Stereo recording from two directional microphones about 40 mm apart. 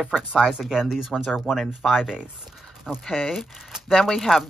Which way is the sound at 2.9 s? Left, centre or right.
Centre.